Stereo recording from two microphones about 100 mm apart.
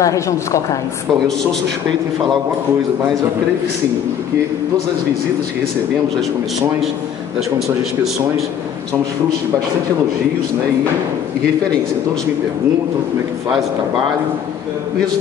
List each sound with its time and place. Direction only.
0.0 s a woman's voice: 30° left (ahead or behind)
7.5 s speech: 5° right (ahead or behind)